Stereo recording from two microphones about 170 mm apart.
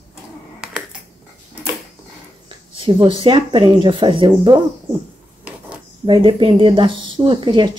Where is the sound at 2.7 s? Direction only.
30° right (ahead or behind).